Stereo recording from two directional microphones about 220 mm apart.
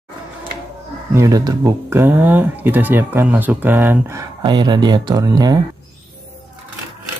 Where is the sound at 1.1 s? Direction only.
15° right (ahead or behind).